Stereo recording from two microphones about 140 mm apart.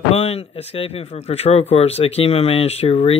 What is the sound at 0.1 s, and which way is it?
Speech, 45° left (ahead or behind).